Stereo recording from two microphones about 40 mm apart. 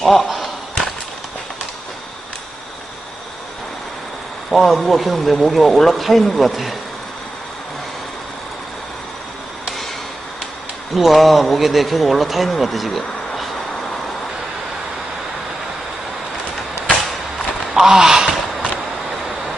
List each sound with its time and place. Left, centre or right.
0.0 s a sound: centre
4.5 s a man's voice: centre
11.0 s a man's voice: centre
17.7 s gasp: centre